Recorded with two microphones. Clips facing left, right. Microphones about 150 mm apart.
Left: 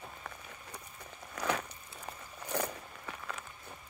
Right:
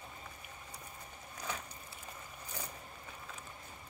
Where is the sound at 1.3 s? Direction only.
75° left (ahead or behind).